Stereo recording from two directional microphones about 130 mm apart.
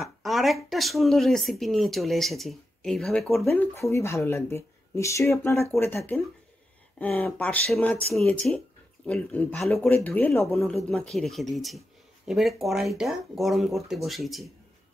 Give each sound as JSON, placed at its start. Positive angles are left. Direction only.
{"t": 0.0, "sound": "speech", "side_deg": 0}
{"t": 3.5, "sound": "speech", "side_deg": 20}
{"t": 10.9, "sound": "speech", "side_deg": 0}